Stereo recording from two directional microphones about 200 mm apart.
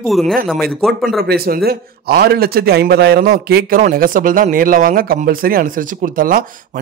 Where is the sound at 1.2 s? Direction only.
50° right (ahead or behind).